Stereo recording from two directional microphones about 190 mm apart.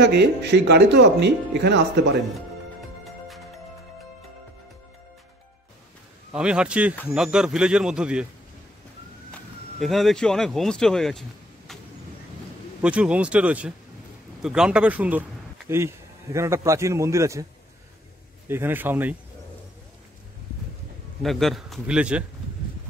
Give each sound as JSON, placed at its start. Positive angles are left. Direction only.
{"t": 0.0, "sound": "speech", "side_deg": -65}
{"t": 6.3, "sound": "speech", "side_deg": -5}
{"t": 9.3, "sound": "speech", "side_deg": 0}
{"t": 12.8, "sound": "a man's voice", "side_deg": -5}
{"t": 18.5, "sound": "a man's voice", "side_deg": -10}
{"t": 21.2, "sound": "speech", "side_deg": 0}